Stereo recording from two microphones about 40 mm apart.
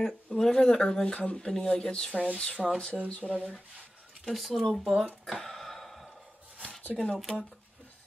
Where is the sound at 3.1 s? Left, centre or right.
Left.